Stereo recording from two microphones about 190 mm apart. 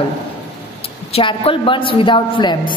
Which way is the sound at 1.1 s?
30° left (ahead or behind).